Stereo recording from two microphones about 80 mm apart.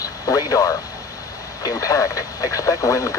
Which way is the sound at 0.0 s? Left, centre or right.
Left.